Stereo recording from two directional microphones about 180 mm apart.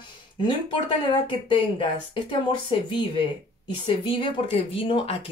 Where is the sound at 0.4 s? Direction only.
25° left (ahead or behind).